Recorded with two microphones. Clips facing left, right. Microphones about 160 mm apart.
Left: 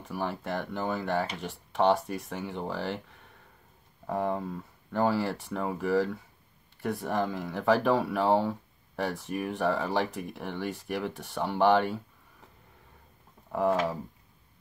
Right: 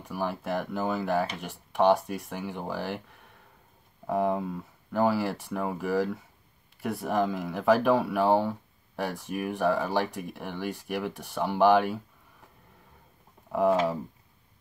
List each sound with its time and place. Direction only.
0.1 s speech: 5° right (ahead or behind)
4.1 s speech: 5° right (ahead or behind)
13.5 s speech: 5° right (ahead or behind)